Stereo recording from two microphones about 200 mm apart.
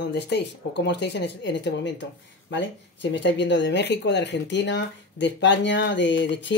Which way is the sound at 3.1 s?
65° left (ahead or behind).